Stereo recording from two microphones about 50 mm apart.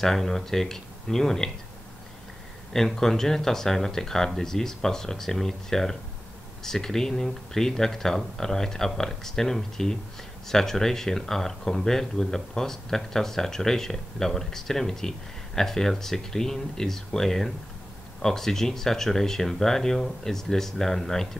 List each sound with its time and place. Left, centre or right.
0.0 s speech: centre
2.7 s speech: centre